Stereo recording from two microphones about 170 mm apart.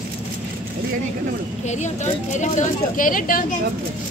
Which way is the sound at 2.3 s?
45° left (ahead or behind).